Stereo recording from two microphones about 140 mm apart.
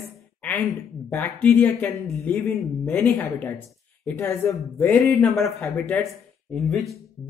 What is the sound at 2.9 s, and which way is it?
Speech, 15° left (ahead or behind).